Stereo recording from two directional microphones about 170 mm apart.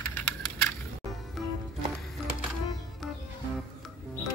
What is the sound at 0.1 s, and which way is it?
Crushing, 10° left (ahead or behind).